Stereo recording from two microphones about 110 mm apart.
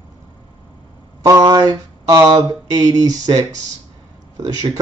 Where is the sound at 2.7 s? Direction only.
35° right (ahead or behind).